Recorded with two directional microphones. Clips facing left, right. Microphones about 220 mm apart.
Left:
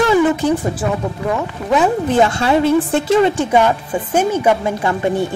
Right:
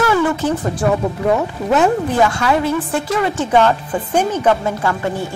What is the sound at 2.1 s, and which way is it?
A woman's voice, 25° left (ahead or behind).